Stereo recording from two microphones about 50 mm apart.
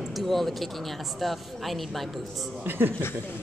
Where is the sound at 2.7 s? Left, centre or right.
Right.